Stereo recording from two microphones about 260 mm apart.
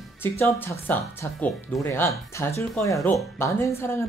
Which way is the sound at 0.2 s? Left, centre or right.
Centre.